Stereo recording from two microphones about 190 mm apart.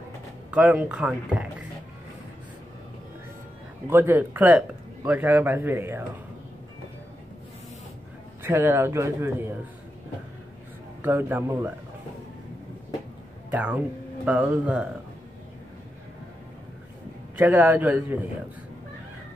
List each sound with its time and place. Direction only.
0.5 s speech: 5° right (ahead or behind)
3.8 s a man's voice: 10° right (ahead or behind)
8.4 s a man's voice: 10° right (ahead or behind)
11.0 s a man's voice: 10° right (ahead or behind)
13.5 s speech: 10° right (ahead or behind)
17.4 s a man's voice: 10° right (ahead or behind)